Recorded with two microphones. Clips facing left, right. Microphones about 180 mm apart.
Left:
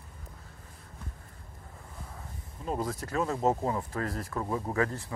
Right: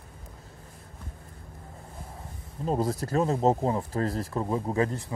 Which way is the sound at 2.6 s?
35° right (ahead or behind).